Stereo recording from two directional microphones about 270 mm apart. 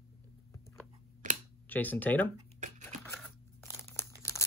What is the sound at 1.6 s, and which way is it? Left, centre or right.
Speech, centre.